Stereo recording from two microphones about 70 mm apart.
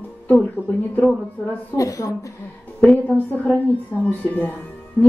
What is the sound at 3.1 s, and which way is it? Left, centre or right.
A woman's voice, centre.